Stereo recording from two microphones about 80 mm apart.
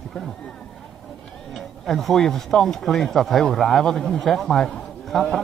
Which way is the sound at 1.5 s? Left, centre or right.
Centre.